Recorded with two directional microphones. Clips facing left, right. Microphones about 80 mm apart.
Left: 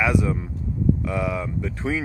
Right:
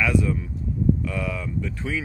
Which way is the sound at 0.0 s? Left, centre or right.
Centre.